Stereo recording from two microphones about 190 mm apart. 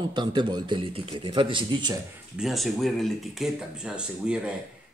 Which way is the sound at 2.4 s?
Centre (ahead or behind).